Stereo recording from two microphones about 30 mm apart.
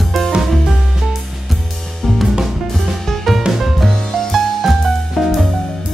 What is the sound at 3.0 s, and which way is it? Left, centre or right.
Music, centre.